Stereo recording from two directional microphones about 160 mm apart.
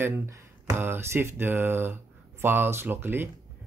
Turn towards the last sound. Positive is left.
turn(degrees=-15)  # may be behind; listen again after turning